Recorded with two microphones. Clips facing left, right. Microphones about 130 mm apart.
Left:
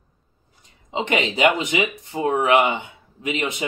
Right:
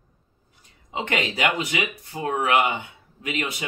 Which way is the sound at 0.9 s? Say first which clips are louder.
Left 4 dB; 20° left (ahead or behind).